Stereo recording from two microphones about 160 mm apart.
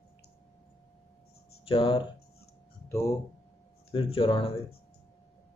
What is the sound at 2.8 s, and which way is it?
Speech, 15° left (ahead or behind).